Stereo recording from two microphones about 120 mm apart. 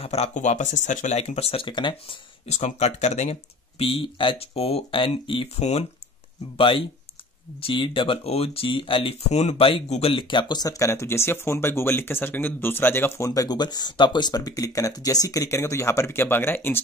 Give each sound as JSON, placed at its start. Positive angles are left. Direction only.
{"t": 0.0, "sound": "speech", "side_deg": 60}
{"t": 2.4, "sound": "speech", "side_deg": 65}
{"t": 5.6, "sound": "speech", "side_deg": 65}
{"t": 6.5, "sound": "speech", "side_deg": 50}